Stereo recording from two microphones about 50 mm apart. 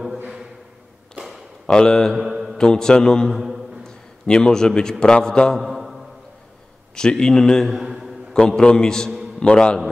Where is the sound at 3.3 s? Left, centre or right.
Centre.